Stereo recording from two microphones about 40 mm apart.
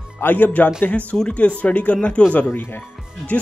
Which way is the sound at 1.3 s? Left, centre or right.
Left.